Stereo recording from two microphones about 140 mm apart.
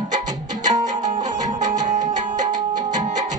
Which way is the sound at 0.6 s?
25° right (ahead or behind).